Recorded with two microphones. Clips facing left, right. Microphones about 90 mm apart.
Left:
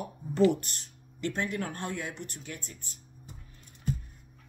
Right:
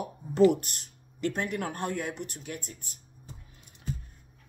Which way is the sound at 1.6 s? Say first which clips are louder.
Right 4 dB; 50° right (ahead or behind).